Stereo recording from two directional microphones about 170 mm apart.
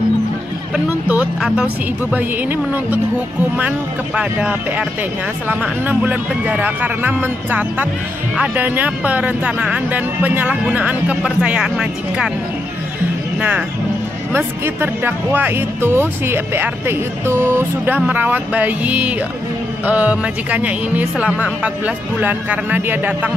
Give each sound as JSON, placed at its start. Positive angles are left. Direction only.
{"t": 0.7, "sound": "speech", "side_deg": -5}
{"t": 13.4, "sound": "speech", "side_deg": -10}